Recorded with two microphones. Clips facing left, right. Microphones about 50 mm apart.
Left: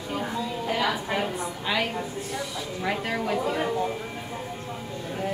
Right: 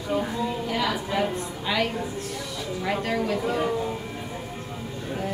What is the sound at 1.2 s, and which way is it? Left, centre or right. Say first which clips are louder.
A woman's voice: right 2 dB; centre.